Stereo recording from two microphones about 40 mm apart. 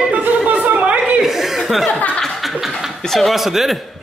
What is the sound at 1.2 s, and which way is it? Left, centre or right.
Speech, centre.